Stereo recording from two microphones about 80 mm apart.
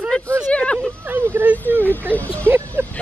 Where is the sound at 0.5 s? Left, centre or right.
Centre.